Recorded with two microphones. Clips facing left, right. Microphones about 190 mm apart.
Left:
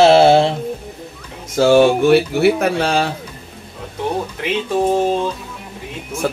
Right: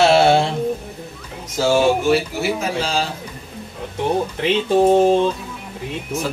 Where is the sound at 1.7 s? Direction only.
60° left (ahead or behind).